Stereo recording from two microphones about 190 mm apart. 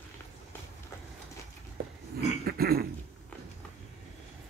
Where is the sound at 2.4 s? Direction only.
55° right (ahead or behind).